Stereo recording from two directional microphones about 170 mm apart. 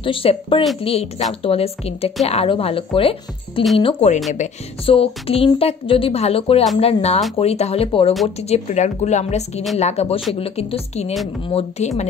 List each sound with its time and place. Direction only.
0.0 s a woman's voice: 30° left (ahead or behind)